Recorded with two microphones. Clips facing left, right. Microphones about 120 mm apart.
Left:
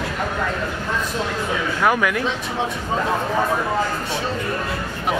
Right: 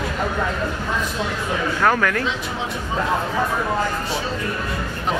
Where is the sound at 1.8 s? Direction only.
10° left (ahead or behind).